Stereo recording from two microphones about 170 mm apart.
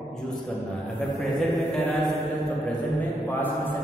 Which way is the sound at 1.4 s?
Centre (ahead or behind).